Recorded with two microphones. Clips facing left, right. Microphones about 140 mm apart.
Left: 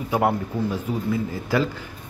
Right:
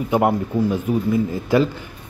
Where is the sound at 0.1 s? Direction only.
15° right (ahead or behind).